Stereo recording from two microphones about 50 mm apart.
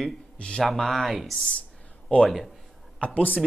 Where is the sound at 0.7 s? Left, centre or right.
Centre.